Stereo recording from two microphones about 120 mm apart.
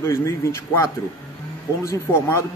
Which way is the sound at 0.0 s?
25° left (ahead or behind).